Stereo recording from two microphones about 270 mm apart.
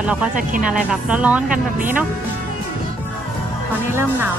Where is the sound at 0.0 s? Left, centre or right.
Centre.